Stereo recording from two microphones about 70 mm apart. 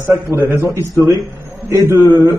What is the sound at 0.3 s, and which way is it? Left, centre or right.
Speech, right.